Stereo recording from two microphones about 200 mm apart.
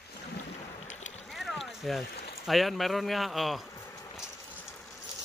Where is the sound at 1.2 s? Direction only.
Centre (ahead or behind).